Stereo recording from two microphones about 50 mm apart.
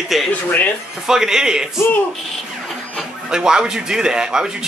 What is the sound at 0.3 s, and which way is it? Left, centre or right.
Speech, left.